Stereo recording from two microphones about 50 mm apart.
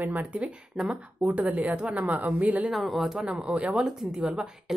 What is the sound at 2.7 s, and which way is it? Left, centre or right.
Speech, centre.